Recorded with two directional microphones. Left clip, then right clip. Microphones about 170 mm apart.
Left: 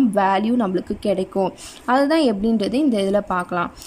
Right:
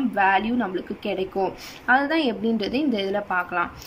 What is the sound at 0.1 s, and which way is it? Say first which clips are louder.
A woman's voice: left 2 dB; 30° left (ahead or behind).